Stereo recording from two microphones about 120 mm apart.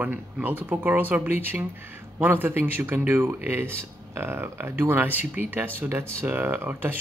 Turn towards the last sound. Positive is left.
turn(degrees=-20)  # may be behind; listen again after turning